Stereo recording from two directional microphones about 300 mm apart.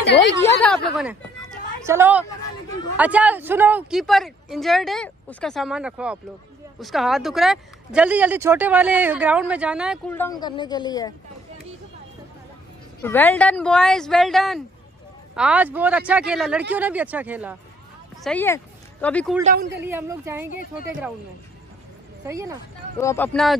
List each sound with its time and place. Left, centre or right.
0.4 s a woman's voice: centre
13.0 s speech: centre
18.2 s speech: centre
19.4 s a man's voice: right
19.8 s a woman's voice: centre
22.2 s a woman's voice: centre
22.9 s speech: centre